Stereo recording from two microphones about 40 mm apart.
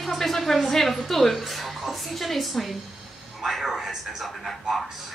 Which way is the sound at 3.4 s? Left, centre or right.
Centre.